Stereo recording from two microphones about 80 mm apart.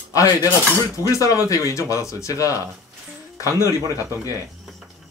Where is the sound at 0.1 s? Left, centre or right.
Left.